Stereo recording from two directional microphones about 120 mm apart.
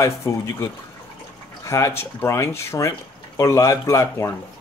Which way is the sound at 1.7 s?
25° left (ahead or behind).